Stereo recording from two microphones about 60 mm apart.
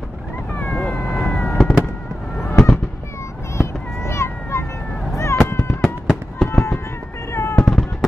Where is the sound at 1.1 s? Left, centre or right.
Centre.